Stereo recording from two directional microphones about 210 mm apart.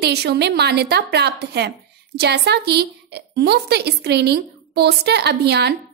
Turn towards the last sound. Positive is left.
turn(degrees=-50)  # may be behind; listen again after turning